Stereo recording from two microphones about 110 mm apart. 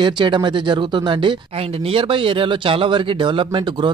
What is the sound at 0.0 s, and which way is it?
Speech, 45° right (ahead or behind).